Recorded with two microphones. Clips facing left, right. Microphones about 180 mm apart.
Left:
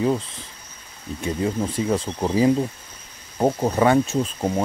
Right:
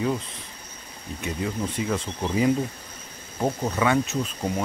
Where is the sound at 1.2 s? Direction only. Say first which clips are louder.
Left 5 dB; 30° left (ahead or behind).